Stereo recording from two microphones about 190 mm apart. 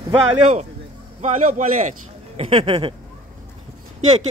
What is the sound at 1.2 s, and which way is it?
A man's voice, 40° right (ahead or behind).